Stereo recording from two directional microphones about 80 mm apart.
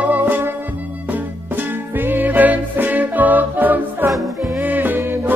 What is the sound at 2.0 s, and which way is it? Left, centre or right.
Music, right.